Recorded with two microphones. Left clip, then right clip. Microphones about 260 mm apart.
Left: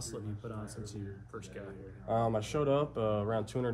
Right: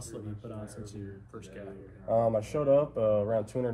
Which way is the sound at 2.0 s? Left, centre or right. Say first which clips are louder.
Right 5 dB; centre.